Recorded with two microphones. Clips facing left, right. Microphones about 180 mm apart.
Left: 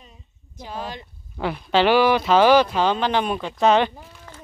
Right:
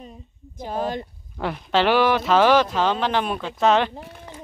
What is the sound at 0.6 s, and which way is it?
Speech, 50° right (ahead or behind).